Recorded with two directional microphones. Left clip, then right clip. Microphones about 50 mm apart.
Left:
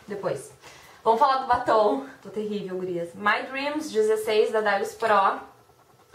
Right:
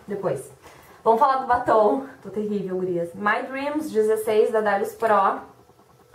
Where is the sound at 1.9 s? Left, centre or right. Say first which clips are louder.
Right 3 dB; left.